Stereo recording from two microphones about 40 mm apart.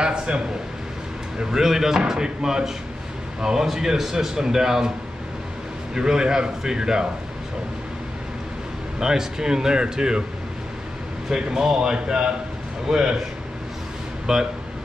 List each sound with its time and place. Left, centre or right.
0.0 s a man's voice: right
1.4 s speech: centre
5.9 s speech: centre
9.0 s speech: centre
11.2 s speech: centre
14.2 s speech: centre